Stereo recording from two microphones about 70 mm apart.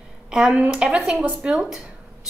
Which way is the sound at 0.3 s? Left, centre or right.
Centre.